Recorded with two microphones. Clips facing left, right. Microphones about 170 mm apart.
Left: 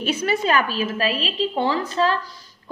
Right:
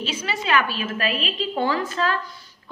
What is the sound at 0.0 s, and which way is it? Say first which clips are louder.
A woman's voice: left 6 dB; 55° left (ahead or behind).